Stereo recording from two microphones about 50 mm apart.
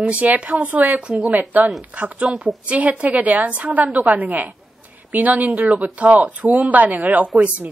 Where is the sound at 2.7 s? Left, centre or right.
Right.